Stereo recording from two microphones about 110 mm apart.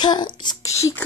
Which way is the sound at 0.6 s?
30° left (ahead or behind).